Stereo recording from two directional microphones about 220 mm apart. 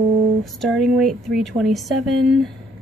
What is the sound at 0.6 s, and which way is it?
Speech, centre (ahead or behind).